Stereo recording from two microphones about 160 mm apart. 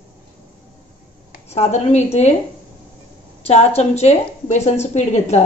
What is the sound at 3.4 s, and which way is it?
A woman's voice, 40° left (ahead or behind).